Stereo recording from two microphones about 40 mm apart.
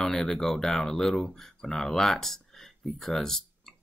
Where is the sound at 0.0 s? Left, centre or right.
Centre.